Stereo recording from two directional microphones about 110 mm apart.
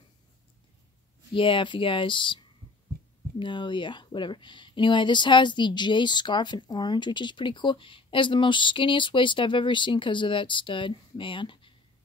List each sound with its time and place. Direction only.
1.3 s speech: 50° left (ahead or behind)